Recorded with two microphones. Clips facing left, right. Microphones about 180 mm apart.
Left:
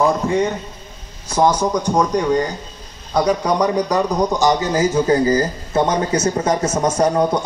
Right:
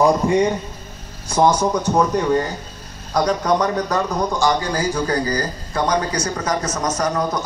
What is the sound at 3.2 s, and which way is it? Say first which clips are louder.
Speech: left 1 dB; 10° left (ahead or behind).